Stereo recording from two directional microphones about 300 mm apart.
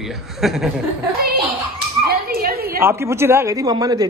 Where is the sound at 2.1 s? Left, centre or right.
Right.